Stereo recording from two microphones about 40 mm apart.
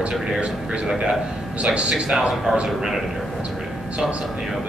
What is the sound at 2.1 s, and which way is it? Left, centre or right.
Speech, centre.